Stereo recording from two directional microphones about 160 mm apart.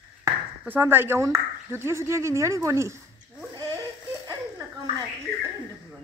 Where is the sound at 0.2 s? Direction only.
15° right (ahead or behind).